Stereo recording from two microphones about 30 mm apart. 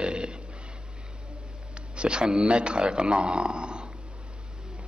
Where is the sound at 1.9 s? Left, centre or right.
Right.